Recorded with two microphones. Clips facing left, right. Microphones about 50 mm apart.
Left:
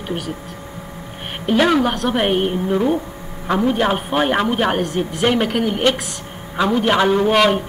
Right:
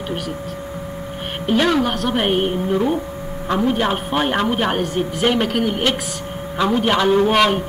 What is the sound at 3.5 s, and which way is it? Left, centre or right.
A woman's voice, centre.